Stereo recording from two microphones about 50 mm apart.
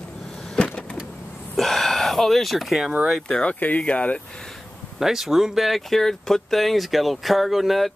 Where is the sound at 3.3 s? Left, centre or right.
Left.